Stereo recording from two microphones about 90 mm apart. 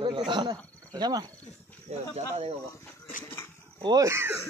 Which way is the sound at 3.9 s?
30° right (ahead or behind).